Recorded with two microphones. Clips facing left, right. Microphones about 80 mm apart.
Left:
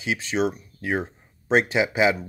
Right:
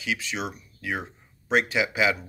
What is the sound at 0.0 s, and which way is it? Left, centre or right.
Speech, left.